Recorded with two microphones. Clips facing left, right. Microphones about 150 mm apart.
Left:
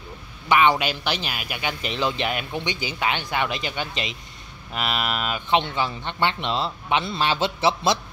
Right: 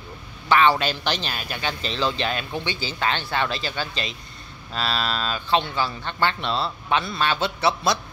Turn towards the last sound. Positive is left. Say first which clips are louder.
# left 1 dB
turn(degrees=25)  # may be behind; listen again after turning